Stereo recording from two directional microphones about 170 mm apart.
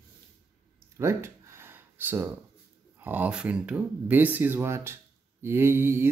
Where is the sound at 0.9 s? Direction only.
15° right (ahead or behind).